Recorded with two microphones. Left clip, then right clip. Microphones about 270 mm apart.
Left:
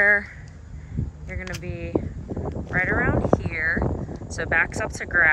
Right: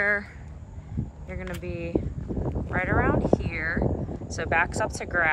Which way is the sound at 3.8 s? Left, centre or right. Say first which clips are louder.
Left 1 dB; right.